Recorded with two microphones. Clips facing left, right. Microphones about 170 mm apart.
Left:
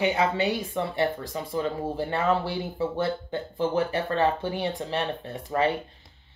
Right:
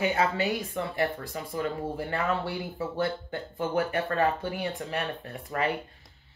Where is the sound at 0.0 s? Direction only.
25° left (ahead or behind).